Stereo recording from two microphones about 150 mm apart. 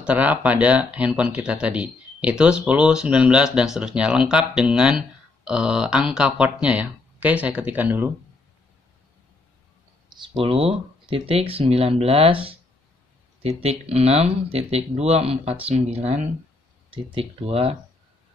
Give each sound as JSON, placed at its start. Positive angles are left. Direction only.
{"t": 0.0, "sound": "speech", "side_deg": -10}
{"t": 10.3, "sound": "speech", "side_deg": -40}